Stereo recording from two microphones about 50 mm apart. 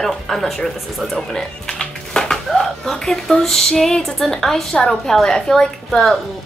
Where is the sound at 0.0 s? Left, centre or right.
Centre.